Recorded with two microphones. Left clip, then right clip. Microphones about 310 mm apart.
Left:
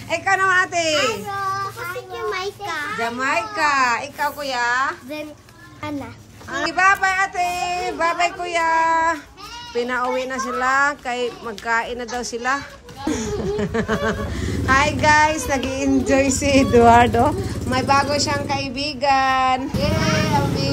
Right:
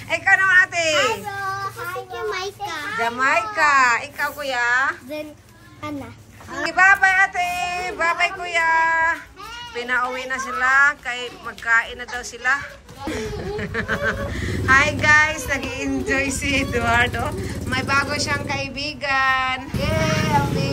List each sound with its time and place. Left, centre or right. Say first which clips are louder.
0.1 s a sound: right 2 dB; centre
2.1 s a child's voice: left 2 dB; centre
6.5 s speech: right 1 dB; centre
13.6 s speech: right 1 dB; centre